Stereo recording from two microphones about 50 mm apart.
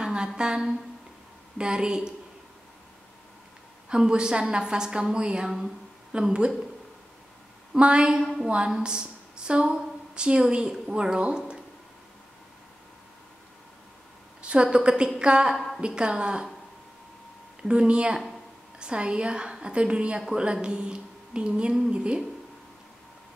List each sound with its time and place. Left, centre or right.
0.0 s a sound: centre
1.6 s a woman's voice: centre
3.9 s a woman's voice: centre
7.7 s a woman's voice: centre
14.4 s a woman's voice: centre
15.5 s a sound: centre
15.8 s a woman's voice: centre
17.6 s a woman's voice: right